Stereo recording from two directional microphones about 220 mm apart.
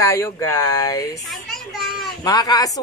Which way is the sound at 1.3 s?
Centre (ahead or behind).